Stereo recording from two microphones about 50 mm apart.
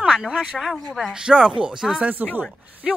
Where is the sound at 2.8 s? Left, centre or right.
Centre.